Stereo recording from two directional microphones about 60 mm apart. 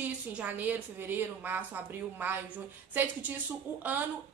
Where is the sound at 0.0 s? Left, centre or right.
Right.